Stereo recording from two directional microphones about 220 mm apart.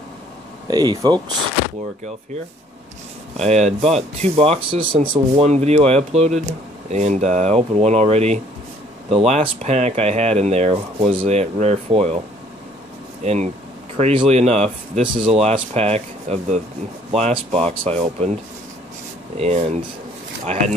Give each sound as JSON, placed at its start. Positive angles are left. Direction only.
{"t": 0.7, "sound": "speech", "side_deg": -20}
{"t": 3.3, "sound": "speech", "side_deg": -30}
{"t": 13.2, "sound": "speech", "side_deg": -30}